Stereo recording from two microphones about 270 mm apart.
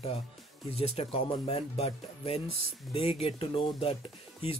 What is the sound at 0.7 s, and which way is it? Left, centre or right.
Speech, left.